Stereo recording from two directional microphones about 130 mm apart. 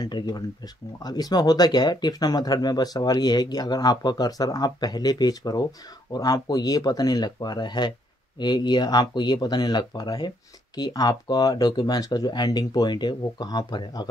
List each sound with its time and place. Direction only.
0.0 s speech: 30° left (ahead or behind)